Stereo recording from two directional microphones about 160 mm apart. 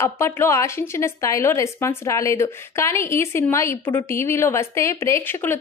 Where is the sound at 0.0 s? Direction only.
15° left (ahead or behind).